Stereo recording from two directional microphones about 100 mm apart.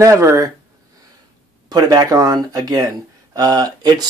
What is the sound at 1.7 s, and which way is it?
Speech, 40° right (ahead or behind).